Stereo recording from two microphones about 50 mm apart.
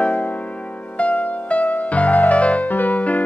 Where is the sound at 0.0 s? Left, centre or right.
Left.